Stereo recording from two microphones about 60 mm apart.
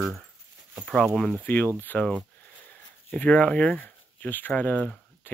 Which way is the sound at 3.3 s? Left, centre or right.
Centre.